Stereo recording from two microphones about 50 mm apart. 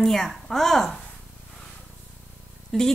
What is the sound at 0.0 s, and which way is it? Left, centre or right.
Speech, centre.